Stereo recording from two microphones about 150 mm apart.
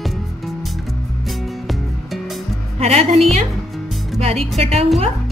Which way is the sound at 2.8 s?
45° right (ahead or behind).